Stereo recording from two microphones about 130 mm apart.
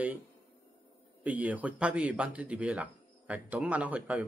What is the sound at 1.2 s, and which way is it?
A man's voice, 10° right (ahead or behind).